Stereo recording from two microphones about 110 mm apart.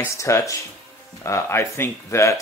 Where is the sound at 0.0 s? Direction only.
25° left (ahead or behind).